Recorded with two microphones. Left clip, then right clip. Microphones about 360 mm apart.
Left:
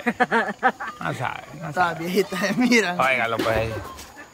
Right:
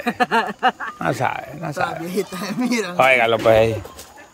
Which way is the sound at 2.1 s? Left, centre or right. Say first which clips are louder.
Left 2 dB; centre.